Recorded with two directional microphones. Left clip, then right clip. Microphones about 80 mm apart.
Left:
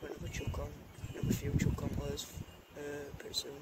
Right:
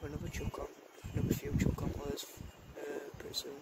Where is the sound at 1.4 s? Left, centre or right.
Right.